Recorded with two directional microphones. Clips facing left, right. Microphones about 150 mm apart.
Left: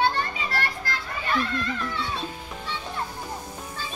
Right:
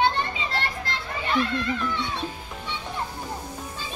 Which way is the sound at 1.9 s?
20° right (ahead or behind).